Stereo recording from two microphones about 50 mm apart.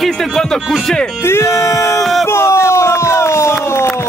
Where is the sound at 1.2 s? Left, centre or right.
Left.